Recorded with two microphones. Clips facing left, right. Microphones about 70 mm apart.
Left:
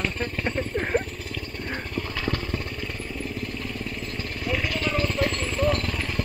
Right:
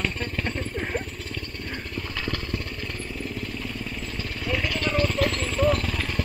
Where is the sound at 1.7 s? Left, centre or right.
Centre.